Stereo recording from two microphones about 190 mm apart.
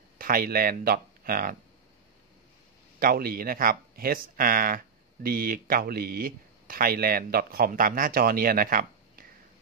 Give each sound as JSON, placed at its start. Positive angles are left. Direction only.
{"t": 0.2, "sound": "speech", "side_deg": -50}
{"t": 3.0, "sound": "speech", "side_deg": -50}